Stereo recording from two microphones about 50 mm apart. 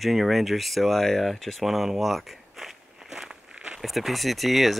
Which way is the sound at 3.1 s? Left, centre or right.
Centre.